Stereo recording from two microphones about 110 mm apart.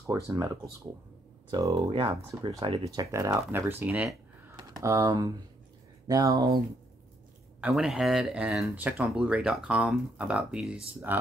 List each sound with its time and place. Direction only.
0.0 s speech: 30° right (ahead or behind)
1.5 s speech: 30° right (ahead or behind)
2.6 s speech: 60° right (ahead or behind)
3.0 s speech: 30° right (ahead or behind); by 4.1 s 15° right (ahead or behind)
4.7 s speech: 30° right (ahead or behind)
7.7 s speech: 5° right (ahead or behind)
11.1 s speech: 15° right (ahead or behind)